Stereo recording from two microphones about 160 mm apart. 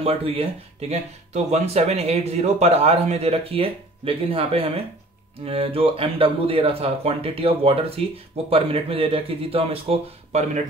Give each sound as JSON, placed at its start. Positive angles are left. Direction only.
{"t": 0.0, "sound": "speech", "side_deg": -35}